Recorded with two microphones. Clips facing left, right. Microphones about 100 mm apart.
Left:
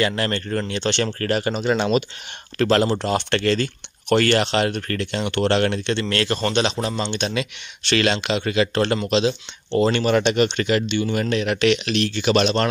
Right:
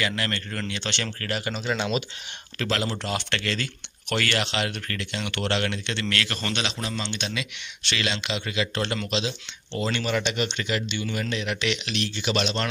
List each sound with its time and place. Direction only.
0.0 s speech: 35° left (ahead or behind)
5.9 s a man's voice: 30° left (ahead or behind); by 12.6 s 50° left (ahead or behind)